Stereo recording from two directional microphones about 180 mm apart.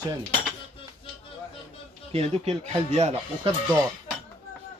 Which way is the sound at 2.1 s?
35° right (ahead or behind).